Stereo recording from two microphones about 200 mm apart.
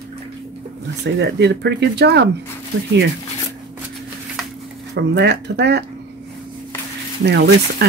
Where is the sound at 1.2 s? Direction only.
60° right (ahead or behind).